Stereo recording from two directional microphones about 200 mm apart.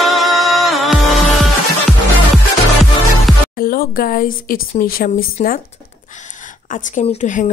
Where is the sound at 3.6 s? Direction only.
45° left (ahead or behind).